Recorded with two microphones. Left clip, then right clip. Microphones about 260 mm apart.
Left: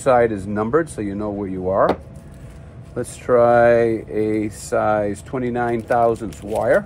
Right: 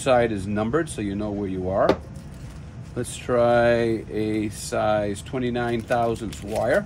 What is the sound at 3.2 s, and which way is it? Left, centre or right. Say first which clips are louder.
Speech: left 6 dB; centre.